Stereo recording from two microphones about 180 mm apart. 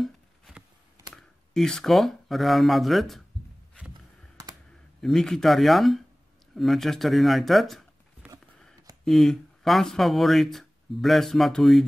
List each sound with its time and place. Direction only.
0.0 s a sound: 5° right (ahead or behind)
1.1 s speech: 5° left (ahead or behind)
5.0 s speech: 5° left (ahead or behind)